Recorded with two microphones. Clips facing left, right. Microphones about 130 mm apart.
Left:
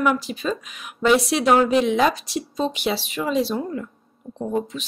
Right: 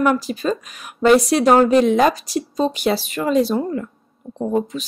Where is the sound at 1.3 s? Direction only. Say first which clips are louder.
Right 4 dB; 45° right (ahead or behind).